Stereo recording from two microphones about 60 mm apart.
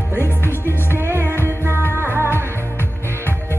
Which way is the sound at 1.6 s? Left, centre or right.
Right.